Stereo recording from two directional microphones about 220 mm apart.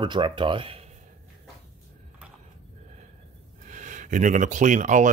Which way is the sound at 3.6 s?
35° right (ahead or behind).